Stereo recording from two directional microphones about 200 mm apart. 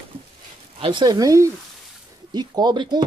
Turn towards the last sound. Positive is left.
turn(degrees=-20)  # may be behind; listen again after turning